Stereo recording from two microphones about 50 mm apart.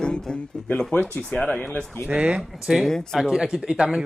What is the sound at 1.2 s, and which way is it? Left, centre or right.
Speech, left.